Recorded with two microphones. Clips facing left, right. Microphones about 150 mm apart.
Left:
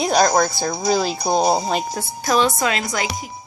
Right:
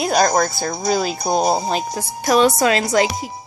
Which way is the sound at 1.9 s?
35° right (ahead or behind).